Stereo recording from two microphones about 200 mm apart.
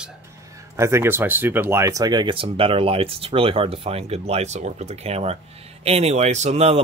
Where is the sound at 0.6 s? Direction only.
15° right (ahead or behind).